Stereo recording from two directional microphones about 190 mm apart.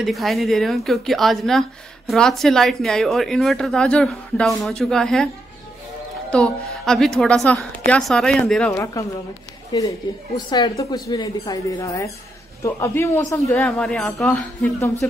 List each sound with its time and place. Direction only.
0.0 s speech: centre (ahead or behind)
6.3 s music: 5° left (ahead or behind)
7.2 s a man's voice: 5° left (ahead or behind)